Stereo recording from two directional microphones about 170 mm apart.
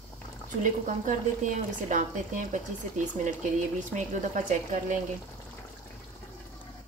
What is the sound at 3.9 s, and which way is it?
Speech, 45° right (ahead or behind).